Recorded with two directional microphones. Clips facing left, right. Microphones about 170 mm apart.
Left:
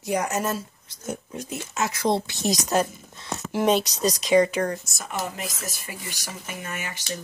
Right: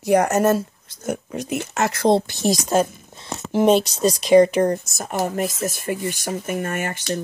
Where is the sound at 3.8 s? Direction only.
25° right (ahead or behind).